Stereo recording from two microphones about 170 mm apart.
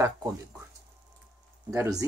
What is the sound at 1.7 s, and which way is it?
Speech, 20° right (ahead or behind).